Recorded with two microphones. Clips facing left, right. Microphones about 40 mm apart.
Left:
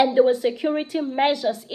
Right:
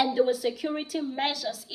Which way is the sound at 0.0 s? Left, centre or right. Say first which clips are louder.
Left 7 dB; left.